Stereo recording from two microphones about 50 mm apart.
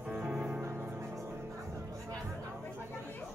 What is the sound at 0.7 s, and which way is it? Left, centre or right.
Music, right.